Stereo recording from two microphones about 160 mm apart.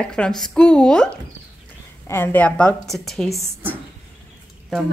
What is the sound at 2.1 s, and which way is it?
Speech, 15° left (ahead or behind).